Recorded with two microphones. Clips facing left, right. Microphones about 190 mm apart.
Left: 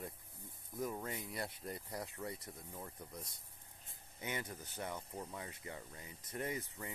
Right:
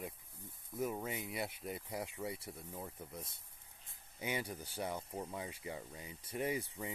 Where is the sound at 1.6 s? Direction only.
5° right (ahead or behind).